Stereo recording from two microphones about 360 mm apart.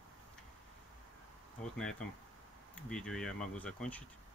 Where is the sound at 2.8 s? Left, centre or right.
Centre.